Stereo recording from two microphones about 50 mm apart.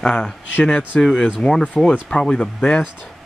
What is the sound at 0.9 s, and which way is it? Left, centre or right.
Speech, centre.